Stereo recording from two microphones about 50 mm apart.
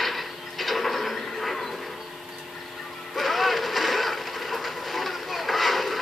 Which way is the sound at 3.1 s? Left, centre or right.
Centre.